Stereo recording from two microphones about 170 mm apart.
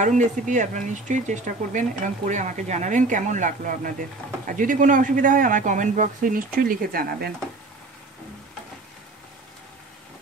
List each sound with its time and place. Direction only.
0.0 s speech: 45° right (ahead or behind); by 7.3 s 60° right (ahead or behind)